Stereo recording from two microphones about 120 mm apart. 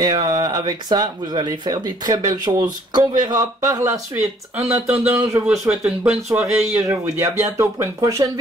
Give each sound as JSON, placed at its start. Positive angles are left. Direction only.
{"t": 0.0, "sound": "speech", "side_deg": -35}
{"t": 4.1, "sound": "speech", "side_deg": -15}
{"t": 6.9, "sound": "speech", "side_deg": -25}